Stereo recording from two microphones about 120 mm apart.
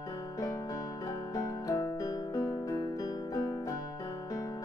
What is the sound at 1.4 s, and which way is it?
Music, 30° left (ahead or behind).